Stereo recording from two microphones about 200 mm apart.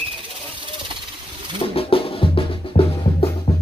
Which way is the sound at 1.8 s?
30° left (ahead or behind).